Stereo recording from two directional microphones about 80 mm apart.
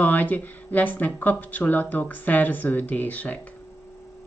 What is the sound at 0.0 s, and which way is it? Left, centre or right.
Speech, left.